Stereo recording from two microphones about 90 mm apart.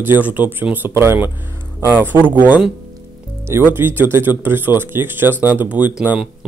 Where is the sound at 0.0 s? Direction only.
20° right (ahead or behind).